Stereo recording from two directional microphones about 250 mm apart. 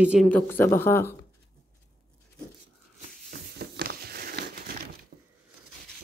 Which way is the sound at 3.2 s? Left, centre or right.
Right.